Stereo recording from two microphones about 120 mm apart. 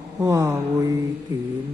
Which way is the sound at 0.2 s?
30° right (ahead or behind).